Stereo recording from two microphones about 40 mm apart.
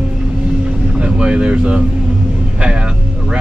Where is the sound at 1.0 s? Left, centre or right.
Right.